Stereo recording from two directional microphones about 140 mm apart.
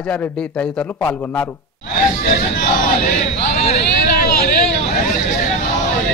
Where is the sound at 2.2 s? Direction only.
80° left; by 5.4 s 60° left (ahead or behind).